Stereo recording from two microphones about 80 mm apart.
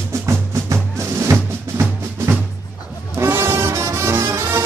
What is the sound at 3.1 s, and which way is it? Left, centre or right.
Brass instrument, right.